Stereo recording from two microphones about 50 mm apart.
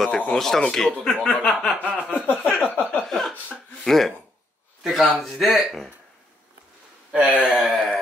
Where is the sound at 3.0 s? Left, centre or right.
Centre.